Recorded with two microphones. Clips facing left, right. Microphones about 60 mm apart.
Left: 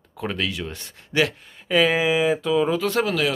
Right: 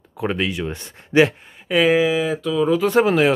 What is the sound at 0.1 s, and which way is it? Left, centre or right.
Speech, centre.